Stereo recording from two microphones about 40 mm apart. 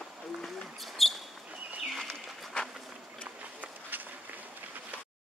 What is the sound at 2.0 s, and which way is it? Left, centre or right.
Bird, centre.